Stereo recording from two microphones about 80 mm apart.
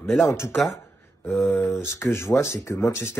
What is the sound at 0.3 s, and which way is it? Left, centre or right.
Speech, left.